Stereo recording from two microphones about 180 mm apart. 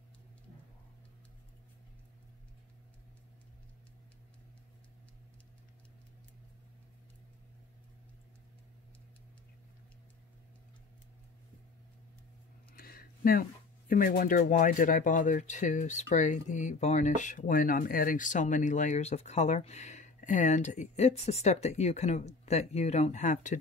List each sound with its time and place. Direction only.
12.7 s speech: 55° left (ahead or behind)